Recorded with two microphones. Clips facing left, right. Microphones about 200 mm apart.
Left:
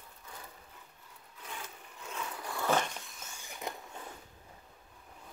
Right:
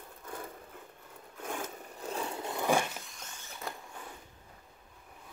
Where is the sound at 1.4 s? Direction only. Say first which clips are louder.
Right 8 dB; 45° right (ahead or behind); by 3.0 s 10° right (ahead or behind).